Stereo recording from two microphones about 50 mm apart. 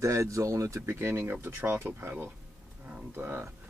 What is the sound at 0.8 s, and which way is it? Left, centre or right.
Speech, right.